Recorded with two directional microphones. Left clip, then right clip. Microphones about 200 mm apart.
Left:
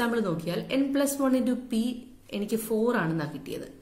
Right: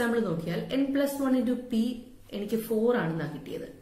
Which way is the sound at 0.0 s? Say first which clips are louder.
Even; 45° left (ahead or behind).